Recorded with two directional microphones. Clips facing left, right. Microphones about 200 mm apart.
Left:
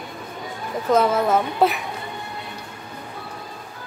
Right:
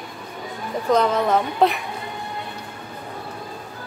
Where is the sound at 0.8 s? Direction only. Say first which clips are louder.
Left 1 dB; 5° left (ahead or behind).